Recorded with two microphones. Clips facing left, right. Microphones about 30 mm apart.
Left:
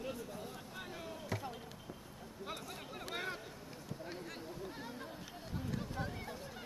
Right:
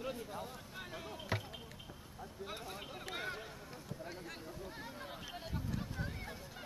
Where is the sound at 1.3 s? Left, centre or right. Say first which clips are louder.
Right 2 dB; right.